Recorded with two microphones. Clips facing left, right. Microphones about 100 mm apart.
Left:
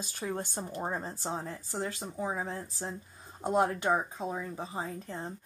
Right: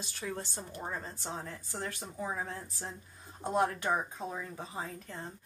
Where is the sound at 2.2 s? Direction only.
20° left (ahead or behind).